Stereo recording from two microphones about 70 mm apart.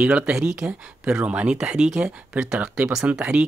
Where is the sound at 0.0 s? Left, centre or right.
Centre.